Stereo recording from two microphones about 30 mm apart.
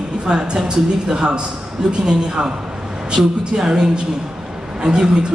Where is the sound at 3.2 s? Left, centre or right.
Centre.